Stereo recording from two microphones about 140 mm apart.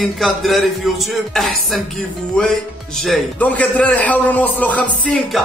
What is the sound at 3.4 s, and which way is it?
A man's voice, 10° left (ahead or behind).